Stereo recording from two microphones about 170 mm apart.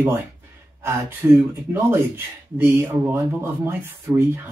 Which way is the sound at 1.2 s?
15° right (ahead or behind).